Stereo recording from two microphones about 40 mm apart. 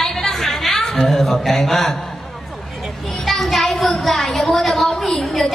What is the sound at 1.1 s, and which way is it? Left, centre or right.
Mantra, centre.